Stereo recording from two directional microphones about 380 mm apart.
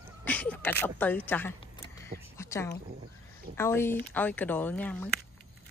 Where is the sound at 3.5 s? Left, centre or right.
Centre.